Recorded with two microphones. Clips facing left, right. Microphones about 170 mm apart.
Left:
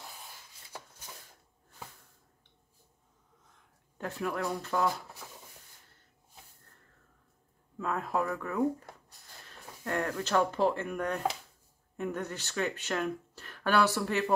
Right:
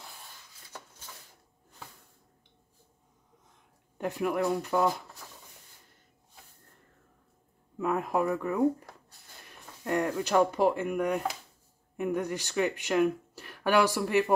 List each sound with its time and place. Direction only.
3.5 s speech: 15° right (ahead or behind)
7.7 s speech: 15° right (ahead or behind)